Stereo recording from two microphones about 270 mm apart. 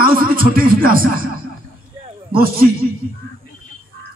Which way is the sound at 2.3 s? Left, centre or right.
Right.